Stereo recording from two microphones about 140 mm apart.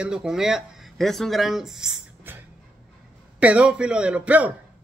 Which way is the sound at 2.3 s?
15° right (ahead or behind).